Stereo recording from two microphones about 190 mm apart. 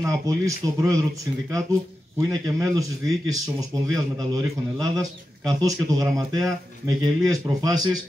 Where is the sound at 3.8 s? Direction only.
20° right (ahead or behind).